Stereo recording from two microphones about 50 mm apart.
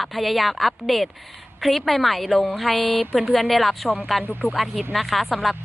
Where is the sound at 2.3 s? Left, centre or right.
Left.